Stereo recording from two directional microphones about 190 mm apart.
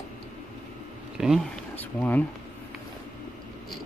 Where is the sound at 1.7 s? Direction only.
10° left (ahead or behind).